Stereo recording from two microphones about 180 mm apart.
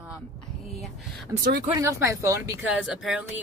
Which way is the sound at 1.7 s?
15° right (ahead or behind).